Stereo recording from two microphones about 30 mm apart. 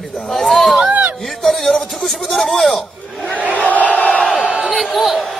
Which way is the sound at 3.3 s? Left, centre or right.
Right.